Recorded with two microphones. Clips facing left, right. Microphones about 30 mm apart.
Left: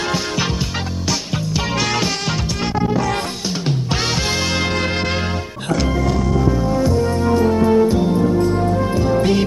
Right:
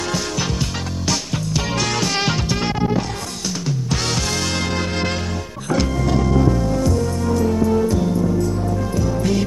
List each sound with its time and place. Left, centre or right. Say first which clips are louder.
1.0 s music: right 1 dB; centre
3.9 s music: left 2 dB; left
6.1 s music: even; centre; by 8.1 s left
8.1 s music: left 4 dB; left
8.7 s music: left 5 dB; left